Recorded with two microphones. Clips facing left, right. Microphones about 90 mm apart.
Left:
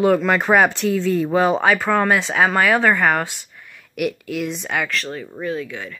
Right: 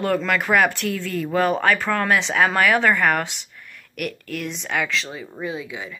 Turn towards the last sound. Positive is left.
turn(degrees=-10)  # may be behind; listen again after turning